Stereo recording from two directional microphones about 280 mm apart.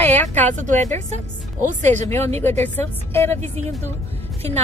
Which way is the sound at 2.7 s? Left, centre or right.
Centre.